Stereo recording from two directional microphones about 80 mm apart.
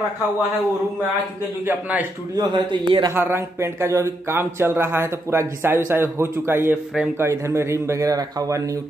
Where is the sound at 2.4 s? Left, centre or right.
Right.